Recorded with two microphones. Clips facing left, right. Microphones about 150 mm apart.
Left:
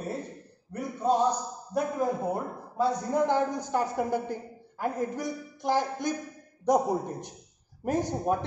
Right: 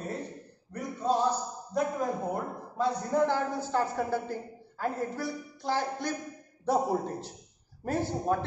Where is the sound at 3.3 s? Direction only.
15° left (ahead or behind).